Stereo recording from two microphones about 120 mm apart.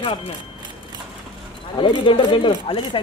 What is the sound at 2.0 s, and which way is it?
Speech, 45° left (ahead or behind).